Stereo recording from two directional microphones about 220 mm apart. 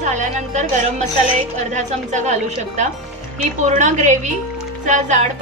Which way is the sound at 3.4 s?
35° right (ahead or behind).